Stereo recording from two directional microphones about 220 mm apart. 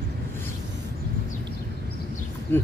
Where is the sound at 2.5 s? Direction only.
10° left (ahead or behind).